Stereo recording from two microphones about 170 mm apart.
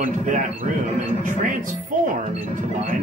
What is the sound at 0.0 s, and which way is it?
Speech, 50° right (ahead or behind).